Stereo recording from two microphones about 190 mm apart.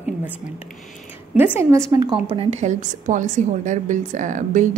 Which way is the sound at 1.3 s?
10° right (ahead or behind).